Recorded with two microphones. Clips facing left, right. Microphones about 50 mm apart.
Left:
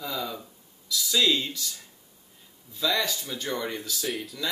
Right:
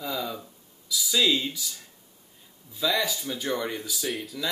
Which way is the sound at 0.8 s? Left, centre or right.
Centre.